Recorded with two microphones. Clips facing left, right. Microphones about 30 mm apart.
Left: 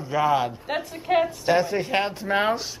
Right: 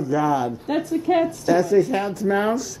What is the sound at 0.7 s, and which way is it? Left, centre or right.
Speech, centre.